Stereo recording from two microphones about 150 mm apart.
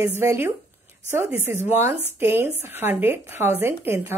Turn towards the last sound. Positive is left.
turn(degrees=-15)  # may be behind; listen again after turning